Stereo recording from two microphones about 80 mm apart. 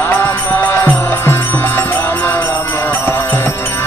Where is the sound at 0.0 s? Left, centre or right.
Left.